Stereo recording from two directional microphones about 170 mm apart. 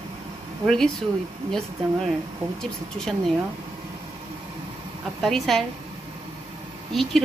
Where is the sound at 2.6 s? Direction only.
5° left (ahead or behind).